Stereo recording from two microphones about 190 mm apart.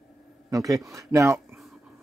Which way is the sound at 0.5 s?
20° right (ahead or behind).